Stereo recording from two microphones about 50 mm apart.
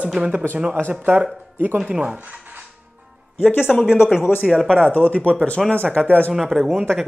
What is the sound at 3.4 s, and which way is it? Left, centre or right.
Speech, left.